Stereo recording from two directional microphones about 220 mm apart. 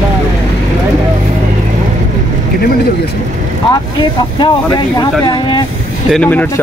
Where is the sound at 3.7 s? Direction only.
20° left (ahead or behind).